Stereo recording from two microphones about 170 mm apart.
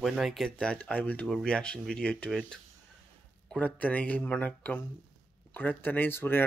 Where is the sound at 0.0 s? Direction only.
Centre (ahead or behind).